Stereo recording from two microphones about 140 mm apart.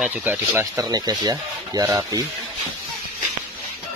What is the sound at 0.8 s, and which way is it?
Speech, 25° right (ahead or behind).